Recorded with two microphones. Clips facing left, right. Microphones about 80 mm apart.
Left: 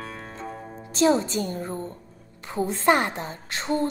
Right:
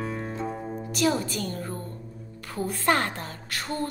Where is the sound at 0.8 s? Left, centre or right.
Left.